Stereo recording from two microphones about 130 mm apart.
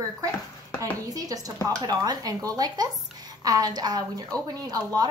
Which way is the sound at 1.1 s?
30° right (ahead or behind).